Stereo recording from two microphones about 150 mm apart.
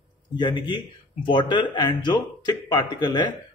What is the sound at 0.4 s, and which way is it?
Speech, 30° left (ahead or behind).